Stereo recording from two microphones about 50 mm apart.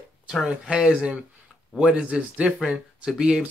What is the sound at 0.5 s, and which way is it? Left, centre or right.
Speech, centre.